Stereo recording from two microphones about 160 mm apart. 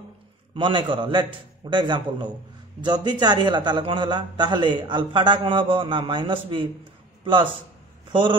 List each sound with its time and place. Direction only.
0.6 s a man's voice: 30° right (ahead or behind)
8.1 s a man's voice: 30° right (ahead or behind)